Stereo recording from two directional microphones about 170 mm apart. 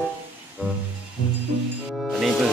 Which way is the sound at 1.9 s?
Centre (ahead or behind).